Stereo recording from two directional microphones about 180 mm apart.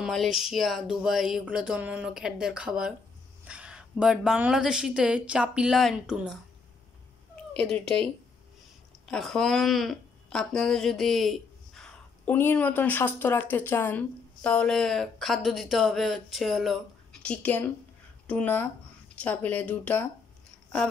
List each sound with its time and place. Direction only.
0.0 s speech: centre (ahead or behind)
7.5 s speech: 5° left (ahead or behind)